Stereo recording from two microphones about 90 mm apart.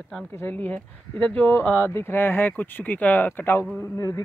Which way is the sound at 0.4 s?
20° left (ahead or behind).